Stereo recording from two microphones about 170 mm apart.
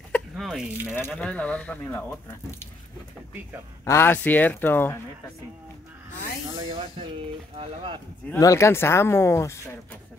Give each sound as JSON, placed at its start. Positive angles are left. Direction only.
{"t": 0.1, "sound": "a sound", "side_deg": 0}
{"t": 1.1, "sound": "speech", "side_deg": 5}
{"t": 3.8, "sound": "speech", "side_deg": 15}
{"t": 6.5, "sound": "speech", "side_deg": -30}
{"t": 8.4, "sound": "speech", "side_deg": 15}